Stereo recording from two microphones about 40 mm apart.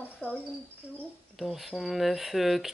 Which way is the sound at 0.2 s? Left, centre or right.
Left.